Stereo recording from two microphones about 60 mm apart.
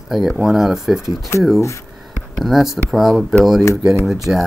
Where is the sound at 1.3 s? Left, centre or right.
Left.